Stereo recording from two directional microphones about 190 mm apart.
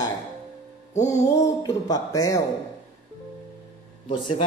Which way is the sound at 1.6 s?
20° left (ahead or behind).